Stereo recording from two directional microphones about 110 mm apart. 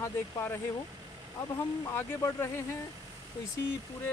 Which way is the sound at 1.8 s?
25° left (ahead or behind).